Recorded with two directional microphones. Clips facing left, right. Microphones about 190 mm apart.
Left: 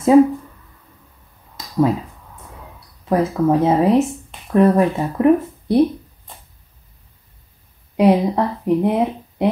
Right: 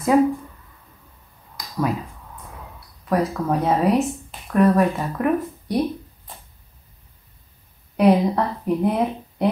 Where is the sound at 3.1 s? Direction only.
25° left (ahead or behind).